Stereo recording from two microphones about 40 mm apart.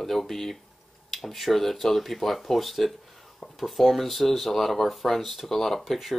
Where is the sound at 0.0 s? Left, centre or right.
Centre.